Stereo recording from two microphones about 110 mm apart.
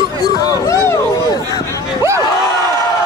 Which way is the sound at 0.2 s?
35° left (ahead or behind).